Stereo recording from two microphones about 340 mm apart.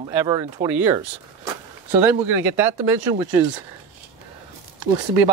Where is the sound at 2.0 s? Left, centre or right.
Centre.